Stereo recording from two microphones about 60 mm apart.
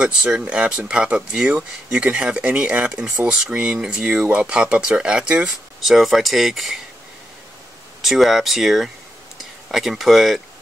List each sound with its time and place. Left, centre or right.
0.0 s speech: centre
5.8 s speech: centre
8.0 s speech: centre